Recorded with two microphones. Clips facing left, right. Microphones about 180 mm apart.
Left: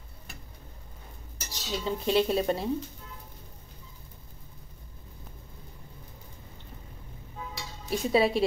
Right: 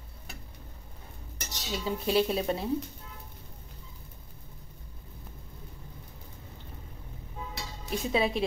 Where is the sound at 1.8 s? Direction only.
5° right (ahead or behind).